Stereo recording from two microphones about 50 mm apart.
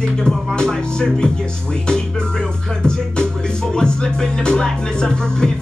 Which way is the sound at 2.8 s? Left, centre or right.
Centre.